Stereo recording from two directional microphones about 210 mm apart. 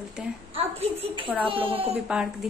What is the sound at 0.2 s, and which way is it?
Speech, 5° right (ahead or behind).